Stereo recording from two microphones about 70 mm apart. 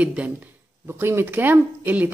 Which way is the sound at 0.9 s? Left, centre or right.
Right.